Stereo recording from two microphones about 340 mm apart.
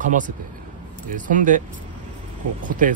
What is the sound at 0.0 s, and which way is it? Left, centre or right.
Speech, right.